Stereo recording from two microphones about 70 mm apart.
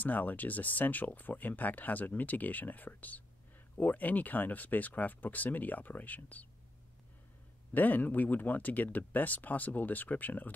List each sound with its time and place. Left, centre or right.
0.0 s speech: left
7.7 s speech: left